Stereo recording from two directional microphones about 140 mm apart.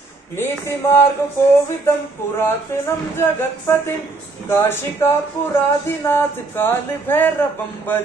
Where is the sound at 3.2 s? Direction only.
15° left (ahead or behind).